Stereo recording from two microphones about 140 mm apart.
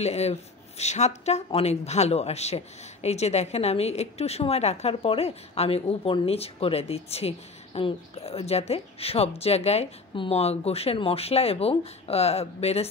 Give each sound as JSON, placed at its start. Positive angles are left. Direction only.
{"t": 0.0, "sound": "speech", "side_deg": 50}